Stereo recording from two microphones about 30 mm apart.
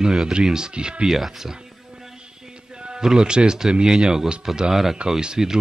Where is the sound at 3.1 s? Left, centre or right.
Right.